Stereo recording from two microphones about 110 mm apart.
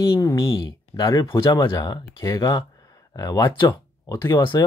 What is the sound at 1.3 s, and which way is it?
Speech, 50° left (ahead or behind).